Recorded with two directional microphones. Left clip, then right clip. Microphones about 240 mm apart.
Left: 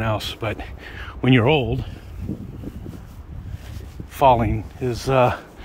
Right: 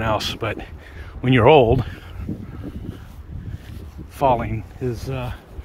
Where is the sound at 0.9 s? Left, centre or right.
Centre.